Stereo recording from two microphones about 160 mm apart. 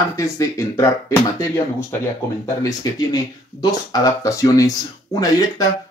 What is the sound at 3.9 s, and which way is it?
Speech, 20° left (ahead or behind).